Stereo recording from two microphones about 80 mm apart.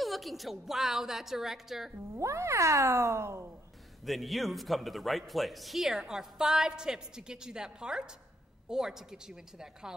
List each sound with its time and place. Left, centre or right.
0.0 s a man's voice: centre
2.1 s speech: right
4.0 s a man's voice: centre